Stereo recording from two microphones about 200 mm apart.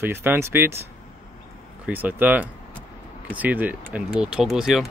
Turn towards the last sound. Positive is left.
turn(degrees=0)  # may be behind; listen again after turning